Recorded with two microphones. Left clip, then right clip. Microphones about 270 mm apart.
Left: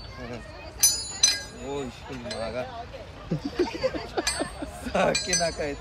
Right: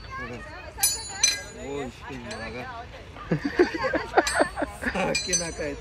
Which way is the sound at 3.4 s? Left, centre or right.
Centre.